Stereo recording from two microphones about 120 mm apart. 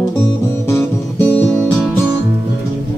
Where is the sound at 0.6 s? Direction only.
20° left (ahead or behind).